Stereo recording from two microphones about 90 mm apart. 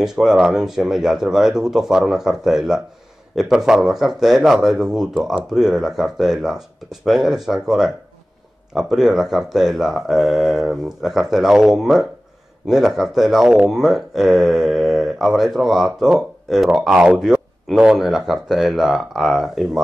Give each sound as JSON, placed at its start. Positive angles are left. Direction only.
{"t": 0.0, "sound": "speech", "side_deg": -5}